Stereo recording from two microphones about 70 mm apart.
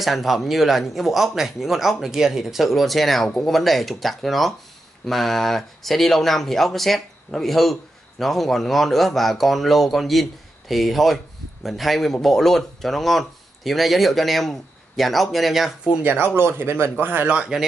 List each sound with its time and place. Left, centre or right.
0.0 s speech: centre
16.0 s speech: right
17.3 s speech: centre